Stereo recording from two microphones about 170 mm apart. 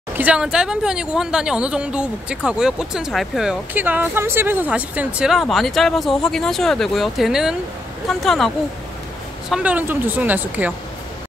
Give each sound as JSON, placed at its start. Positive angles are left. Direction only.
{"t": 0.1, "sound": "a woman's voice", "side_deg": -10}
{"t": 9.5, "sound": "a woman's voice", "side_deg": -10}